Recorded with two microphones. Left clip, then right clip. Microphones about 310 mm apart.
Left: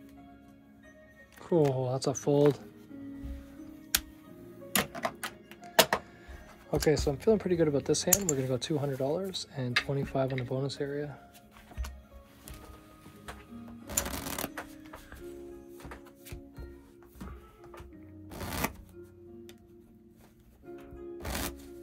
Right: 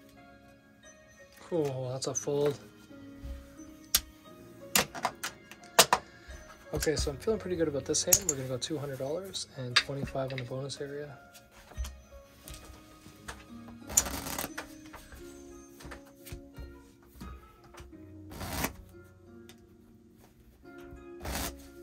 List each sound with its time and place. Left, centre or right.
1.4 s speech: left
4.7 s a sound: centre
6.7 s speech: left
13.8 s shuffling cards: centre
18.4 s shuffling cards: centre
21.2 s music: centre